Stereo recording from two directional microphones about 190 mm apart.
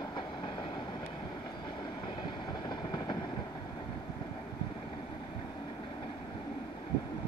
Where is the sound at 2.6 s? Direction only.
20° left (ahead or behind).